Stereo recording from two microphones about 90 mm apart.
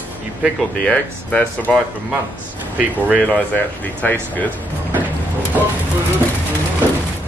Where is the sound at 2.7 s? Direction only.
15° right (ahead or behind).